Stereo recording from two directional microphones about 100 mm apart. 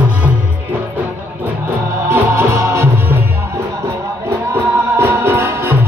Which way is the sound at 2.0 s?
25° right (ahead or behind).